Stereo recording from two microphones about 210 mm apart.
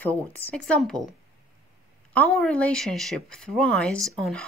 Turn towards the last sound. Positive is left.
turn(degrees=0)  # may be behind; listen again after turning